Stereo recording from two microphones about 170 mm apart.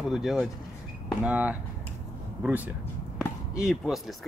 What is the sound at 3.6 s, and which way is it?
Speech, 5° right (ahead or behind).